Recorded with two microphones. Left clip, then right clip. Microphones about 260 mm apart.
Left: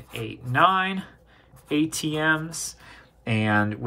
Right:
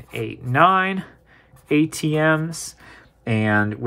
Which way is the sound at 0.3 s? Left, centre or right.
Right.